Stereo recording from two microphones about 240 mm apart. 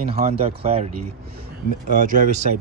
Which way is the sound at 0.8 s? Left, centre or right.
Right.